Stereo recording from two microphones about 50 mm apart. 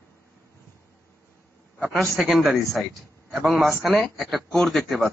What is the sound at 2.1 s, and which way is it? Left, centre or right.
A man's voice, centre.